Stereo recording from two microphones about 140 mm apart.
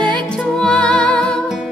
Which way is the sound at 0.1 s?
5° left (ahead or behind).